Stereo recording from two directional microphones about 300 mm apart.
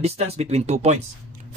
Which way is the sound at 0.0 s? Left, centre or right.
Right.